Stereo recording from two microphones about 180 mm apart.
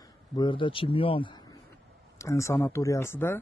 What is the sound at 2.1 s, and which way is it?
Speech, 15° left (ahead or behind).